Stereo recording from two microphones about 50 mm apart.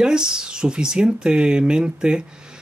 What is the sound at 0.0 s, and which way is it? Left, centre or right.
Speech, centre.